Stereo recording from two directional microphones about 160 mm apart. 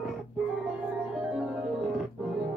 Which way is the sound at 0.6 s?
5° right (ahead or behind).